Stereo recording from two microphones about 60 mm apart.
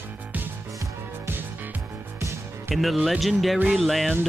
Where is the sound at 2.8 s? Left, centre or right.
Centre.